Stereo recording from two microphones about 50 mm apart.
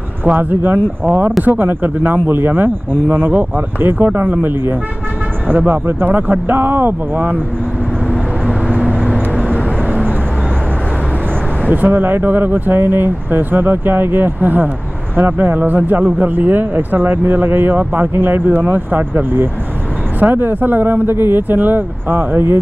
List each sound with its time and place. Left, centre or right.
0.2 s speech: right
11.7 s speech: right